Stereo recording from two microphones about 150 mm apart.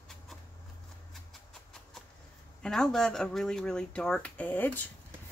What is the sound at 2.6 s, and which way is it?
Speech, 5° left (ahead or behind).